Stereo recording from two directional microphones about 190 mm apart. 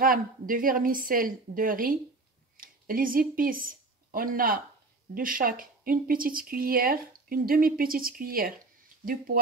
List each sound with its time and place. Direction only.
0.0 s speech: 45° right (ahead or behind)